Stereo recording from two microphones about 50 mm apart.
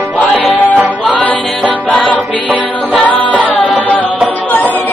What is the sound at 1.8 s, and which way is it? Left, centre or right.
Music, centre.